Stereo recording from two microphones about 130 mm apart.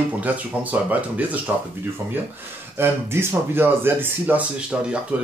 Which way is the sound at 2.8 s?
20° right (ahead or behind).